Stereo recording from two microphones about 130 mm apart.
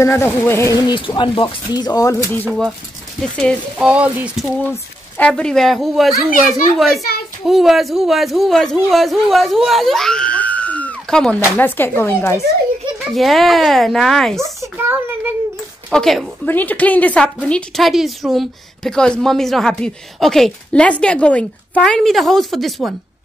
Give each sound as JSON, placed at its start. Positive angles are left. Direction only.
{"t": 0.0, "sound": "speech", "side_deg": 20}
{"t": 0.8, "sound": "speech", "side_deg": 35}
{"t": 3.2, "sound": "a woman's voice", "side_deg": 5}
{"t": 3.7, "sound": "sizzle", "side_deg": -10}
{"t": 5.1, "sound": "a woman's voice", "side_deg": 10}
{"t": 7.4, "sound": "a woman's voice", "side_deg": 0}
{"t": 13.1, "sound": "a woman's voice", "side_deg": 0}
{"t": 14.4, "sound": "a sound", "side_deg": -20}
{"t": 15.9, "sound": "a woman's voice", "side_deg": 5}
{"t": 16.4, "sound": "a woman's voice", "side_deg": 15}